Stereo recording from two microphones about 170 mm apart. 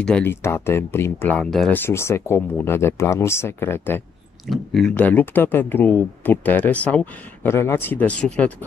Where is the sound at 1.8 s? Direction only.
15° left (ahead or behind).